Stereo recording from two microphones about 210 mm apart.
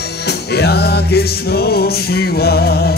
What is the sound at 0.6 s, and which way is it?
Music, 50° left (ahead or behind).